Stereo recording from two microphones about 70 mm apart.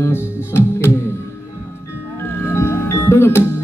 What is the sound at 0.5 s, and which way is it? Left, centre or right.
Music, left.